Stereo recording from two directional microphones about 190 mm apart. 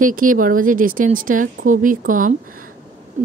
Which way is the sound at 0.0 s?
45° right (ahead or behind).